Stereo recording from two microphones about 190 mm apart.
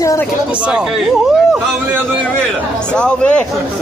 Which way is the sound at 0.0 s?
15° left (ahead or behind).